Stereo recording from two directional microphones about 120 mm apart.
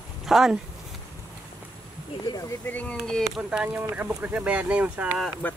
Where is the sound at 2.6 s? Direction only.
15° left (ahead or behind).